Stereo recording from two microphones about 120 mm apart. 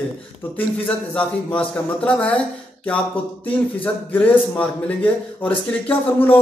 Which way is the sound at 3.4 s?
10° left (ahead or behind).